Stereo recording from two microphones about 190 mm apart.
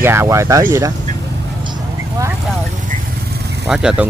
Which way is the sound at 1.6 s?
20° right (ahead or behind).